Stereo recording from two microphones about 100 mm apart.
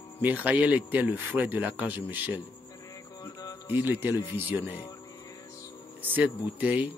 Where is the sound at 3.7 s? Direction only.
20° right (ahead or behind).